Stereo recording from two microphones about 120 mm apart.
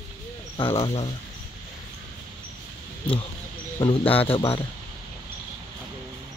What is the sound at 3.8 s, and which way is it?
Speech, 45° left (ahead or behind).